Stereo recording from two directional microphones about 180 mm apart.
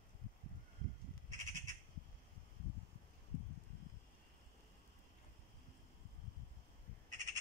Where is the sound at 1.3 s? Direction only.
45° right (ahead or behind).